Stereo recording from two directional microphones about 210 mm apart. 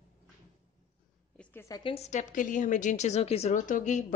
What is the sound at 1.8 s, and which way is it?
A woman's voice, 25° left (ahead or behind).